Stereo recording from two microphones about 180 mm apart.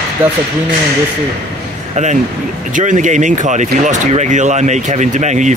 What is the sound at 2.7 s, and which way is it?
Speech, 45° right (ahead or behind).